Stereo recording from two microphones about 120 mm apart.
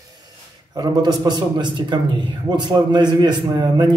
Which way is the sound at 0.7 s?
35° right (ahead or behind).